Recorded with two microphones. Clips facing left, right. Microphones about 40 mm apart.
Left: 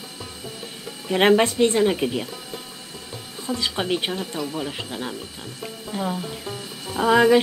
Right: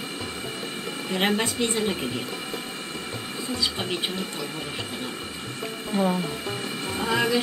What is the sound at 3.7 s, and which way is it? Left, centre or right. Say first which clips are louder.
Speech: left 5 dB; left.